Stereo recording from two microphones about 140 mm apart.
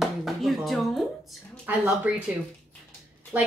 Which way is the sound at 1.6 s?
10° right (ahead or behind).